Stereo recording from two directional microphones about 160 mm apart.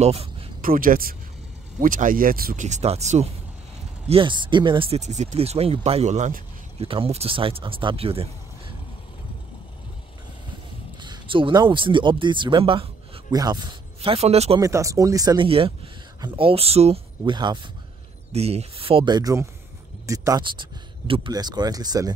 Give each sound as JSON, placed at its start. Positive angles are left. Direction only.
{"t": 0.0, "sound": "a sound", "side_deg": -40}
{"t": 0.6, "sound": "speech", "side_deg": -60}
{"t": 2.6, "sound": "speech", "side_deg": -45}
{"t": 4.1, "sound": "speech", "side_deg": -30}
{"t": 11.0, "sound": "speech", "side_deg": -30}
{"t": 13.3, "sound": "speech", "side_deg": -25}
{"t": 14.6, "sound": "speech", "side_deg": -20}
{"t": 15.4, "sound": "speech", "side_deg": -35}
{"t": 17.2, "sound": "speech", "side_deg": -25}
{"t": 18.3, "sound": "speech", "side_deg": -40}